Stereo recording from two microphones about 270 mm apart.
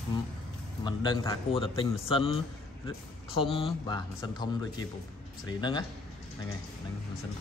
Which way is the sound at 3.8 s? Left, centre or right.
Centre.